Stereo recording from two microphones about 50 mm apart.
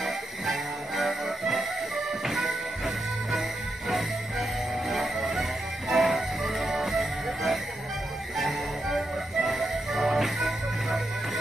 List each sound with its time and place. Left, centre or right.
0.0 s music: centre
3.9 s music: centre